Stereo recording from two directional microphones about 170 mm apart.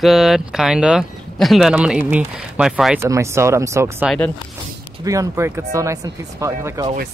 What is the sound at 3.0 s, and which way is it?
Speech, 15° right (ahead or behind).